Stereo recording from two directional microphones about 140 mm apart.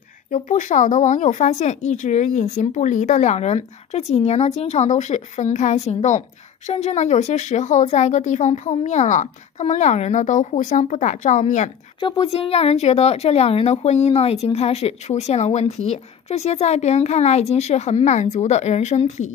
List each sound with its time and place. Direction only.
0.3 s speech: 65° left (ahead or behind)
12.0 s speech: 40° left (ahead or behind); by 19.3 s 55° left (ahead or behind)